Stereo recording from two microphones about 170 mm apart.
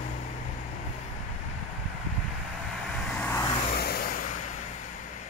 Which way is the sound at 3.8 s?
65° left (ahead or behind).